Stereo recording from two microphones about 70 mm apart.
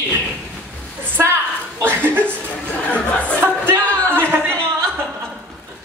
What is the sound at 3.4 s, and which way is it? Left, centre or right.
Music, right.